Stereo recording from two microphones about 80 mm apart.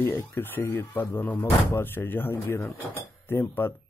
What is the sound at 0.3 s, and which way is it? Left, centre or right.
Speech, left.